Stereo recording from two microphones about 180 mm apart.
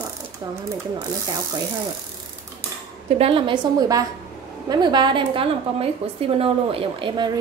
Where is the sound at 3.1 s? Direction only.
30° right (ahead or behind).